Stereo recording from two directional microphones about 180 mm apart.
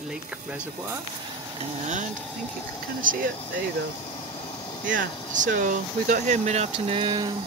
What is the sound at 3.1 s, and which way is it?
Speech, 50° right (ahead or behind).